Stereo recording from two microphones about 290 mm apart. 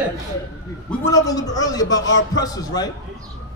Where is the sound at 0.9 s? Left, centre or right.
Centre.